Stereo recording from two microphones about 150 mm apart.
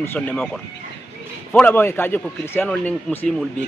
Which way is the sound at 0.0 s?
10° left (ahead or behind).